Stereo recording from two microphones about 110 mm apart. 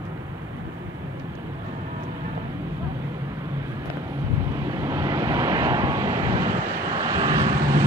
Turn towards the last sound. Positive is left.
turn(degrees=-30)  # may be behind; listen again after turning